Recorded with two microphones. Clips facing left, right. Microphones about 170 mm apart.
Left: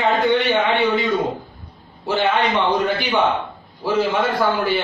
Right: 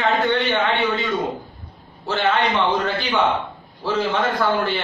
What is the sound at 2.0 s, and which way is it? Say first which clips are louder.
A man's voice: left 1 dB; 15° left (ahead or behind).